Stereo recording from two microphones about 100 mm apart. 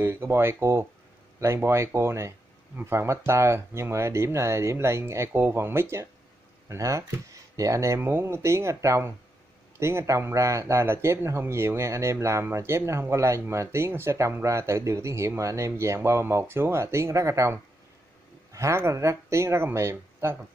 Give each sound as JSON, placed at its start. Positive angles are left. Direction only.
{"t": 0.0, "sound": "speech", "side_deg": -25}